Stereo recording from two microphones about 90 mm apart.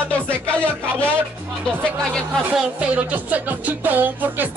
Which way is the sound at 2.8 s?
15° right (ahead or behind).